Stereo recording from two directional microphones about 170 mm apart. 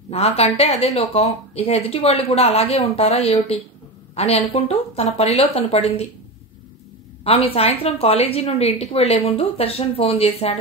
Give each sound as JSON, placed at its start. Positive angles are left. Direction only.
{"t": 0.1, "sound": "a woman's voice", "side_deg": 35}
{"t": 7.2, "sound": "a woman's voice", "side_deg": 35}